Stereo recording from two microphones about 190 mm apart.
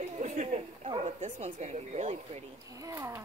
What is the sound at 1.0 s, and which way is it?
Bow-wow, 35° right (ahead or behind).